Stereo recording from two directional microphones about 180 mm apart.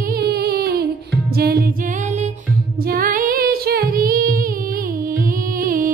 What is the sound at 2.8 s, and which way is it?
Female singing, 55° right (ahead or behind).